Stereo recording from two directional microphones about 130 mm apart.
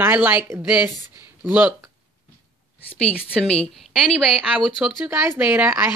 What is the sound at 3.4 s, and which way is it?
Speech, 5° left (ahead or behind).